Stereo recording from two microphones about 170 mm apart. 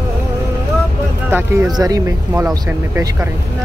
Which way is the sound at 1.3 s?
10° right (ahead or behind).